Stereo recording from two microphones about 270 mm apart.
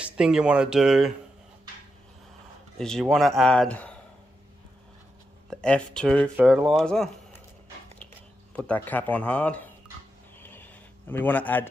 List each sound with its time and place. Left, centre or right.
0.0 s speech: centre
2.8 s speech: centre
5.5 s speech: centre
8.5 s speech: centre
10.4 s a sound: centre